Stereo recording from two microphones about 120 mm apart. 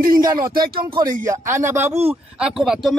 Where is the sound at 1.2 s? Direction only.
20° right (ahead or behind).